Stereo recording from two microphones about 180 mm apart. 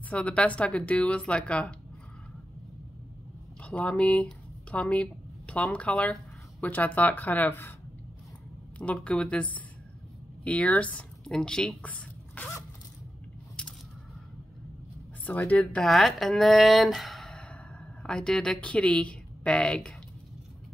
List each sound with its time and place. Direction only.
0.1 s speech: 5° left (ahead or behind)
3.6 s speech: 5° left (ahead or behind)
8.7 s speech: 5° left (ahead or behind)
13.6 s a sound: 5° left (ahead or behind)
15.2 s speech: 10° left (ahead or behind)